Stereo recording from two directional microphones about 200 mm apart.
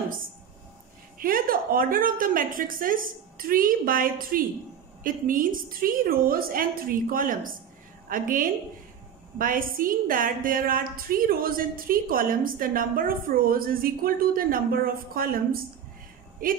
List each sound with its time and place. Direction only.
1.2 s a woman's voice: 45° right (ahead or behind)